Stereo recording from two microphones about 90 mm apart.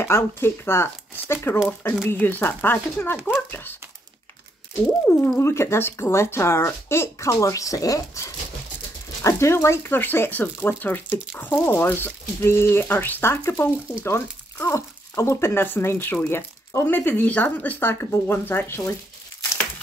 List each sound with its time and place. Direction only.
0.0 s speech: 25° left (ahead or behind)
5.0 s speech: 25° left (ahead or behind)